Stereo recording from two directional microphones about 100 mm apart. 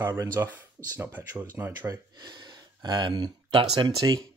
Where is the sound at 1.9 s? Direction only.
45° right (ahead or behind).